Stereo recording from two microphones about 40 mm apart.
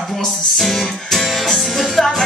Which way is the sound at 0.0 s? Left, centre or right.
Centre.